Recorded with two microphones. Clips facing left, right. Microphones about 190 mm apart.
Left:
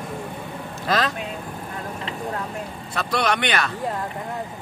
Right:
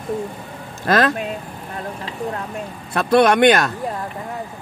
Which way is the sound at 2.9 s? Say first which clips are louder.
Right 9 dB; 55° right (ahead or behind).